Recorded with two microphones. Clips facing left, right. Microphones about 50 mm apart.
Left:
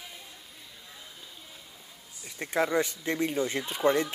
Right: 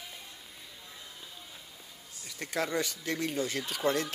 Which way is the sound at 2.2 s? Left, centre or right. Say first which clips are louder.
Left 5 dB; left.